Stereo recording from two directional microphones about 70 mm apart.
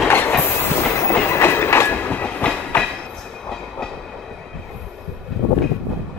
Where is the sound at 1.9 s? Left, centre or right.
Left.